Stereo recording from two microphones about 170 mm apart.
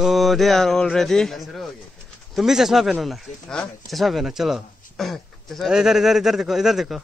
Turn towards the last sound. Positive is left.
turn(degrees=0)  # may be behind; listen again after turning